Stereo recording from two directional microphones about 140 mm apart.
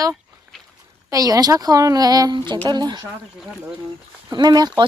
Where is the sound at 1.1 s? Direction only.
25° right (ahead or behind).